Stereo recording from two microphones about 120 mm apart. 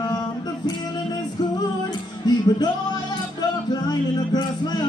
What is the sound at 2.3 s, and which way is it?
Music, 35° left (ahead or behind).